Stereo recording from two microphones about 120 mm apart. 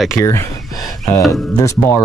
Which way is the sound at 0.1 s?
25° left (ahead or behind).